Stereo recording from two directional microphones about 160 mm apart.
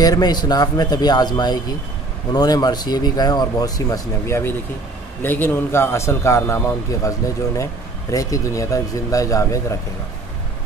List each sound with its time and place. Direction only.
0.0 s a man's voice: 25° left (ahead or behind)